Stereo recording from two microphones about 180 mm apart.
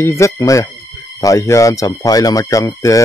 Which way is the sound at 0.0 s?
15° left (ahead or behind).